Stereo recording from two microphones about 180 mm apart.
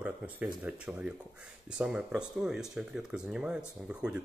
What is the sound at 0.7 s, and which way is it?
Speech, 5° right (ahead or behind).